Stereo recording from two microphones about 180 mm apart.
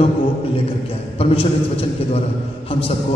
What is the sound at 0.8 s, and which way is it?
A man's voice, 30° left (ahead or behind).